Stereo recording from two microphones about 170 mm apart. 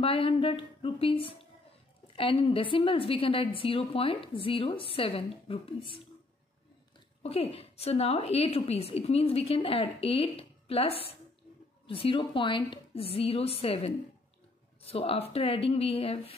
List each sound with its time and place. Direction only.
0.0 s a woman's voice: 35° left (ahead or behind)
7.2 s a woman's voice: 35° left (ahead or behind)